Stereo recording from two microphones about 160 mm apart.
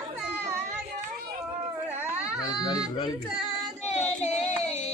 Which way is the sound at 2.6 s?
25° left (ahead or behind).